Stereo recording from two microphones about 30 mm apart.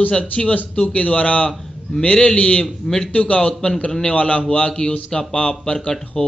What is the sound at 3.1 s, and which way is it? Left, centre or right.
A man's voice, left.